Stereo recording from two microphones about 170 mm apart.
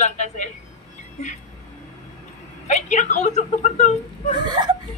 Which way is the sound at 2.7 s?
45° left (ahead or behind).